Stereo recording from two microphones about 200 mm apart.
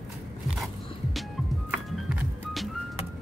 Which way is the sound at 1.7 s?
5° right (ahead or behind).